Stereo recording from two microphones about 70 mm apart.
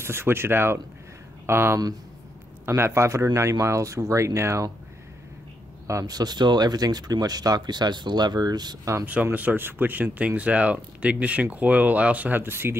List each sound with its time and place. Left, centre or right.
0.0 s speech: right
6.0 s speech: right
9.0 s speech: right